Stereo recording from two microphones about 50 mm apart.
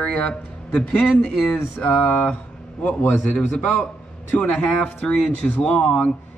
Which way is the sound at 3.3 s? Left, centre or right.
Left.